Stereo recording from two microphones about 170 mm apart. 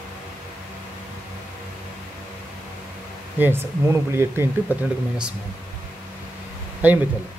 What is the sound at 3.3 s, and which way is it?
Speech, 15° right (ahead or behind).